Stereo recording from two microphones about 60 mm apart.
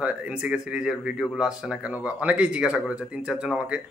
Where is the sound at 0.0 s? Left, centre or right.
Centre.